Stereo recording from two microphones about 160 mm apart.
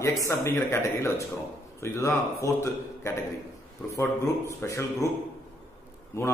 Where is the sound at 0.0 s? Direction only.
20° left (ahead or behind).